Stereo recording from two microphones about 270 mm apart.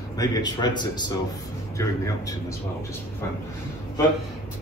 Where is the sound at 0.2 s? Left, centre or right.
Centre.